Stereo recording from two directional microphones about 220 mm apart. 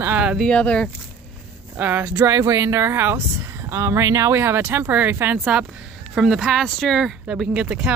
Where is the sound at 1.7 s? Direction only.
10° right (ahead or behind).